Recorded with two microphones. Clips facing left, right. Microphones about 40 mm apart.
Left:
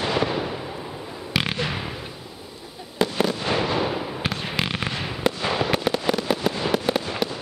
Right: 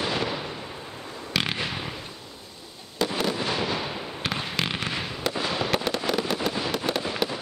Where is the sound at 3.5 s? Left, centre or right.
Centre.